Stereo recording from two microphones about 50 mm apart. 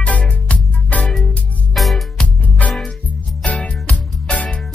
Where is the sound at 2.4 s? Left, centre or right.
Left.